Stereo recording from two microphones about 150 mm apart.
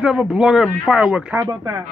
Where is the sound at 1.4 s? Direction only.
20° right (ahead or behind).